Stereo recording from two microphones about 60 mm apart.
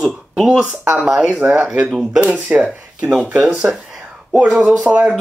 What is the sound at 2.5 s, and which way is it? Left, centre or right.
Speech, right.